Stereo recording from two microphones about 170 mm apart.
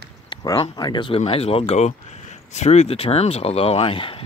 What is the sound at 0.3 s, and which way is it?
Speech, 25° left (ahead or behind).